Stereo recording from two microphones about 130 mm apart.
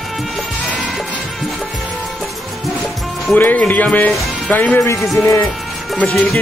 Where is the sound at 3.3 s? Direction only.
10° left (ahead or behind).